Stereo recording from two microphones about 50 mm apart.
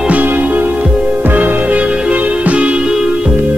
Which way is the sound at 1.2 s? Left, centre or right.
Right.